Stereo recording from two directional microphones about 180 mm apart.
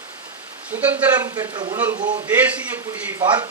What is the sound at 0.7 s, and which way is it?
Speech, 10° right (ahead or behind).